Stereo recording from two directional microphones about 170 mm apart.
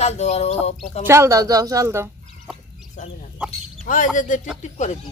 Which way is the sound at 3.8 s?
50° left (ahead or behind).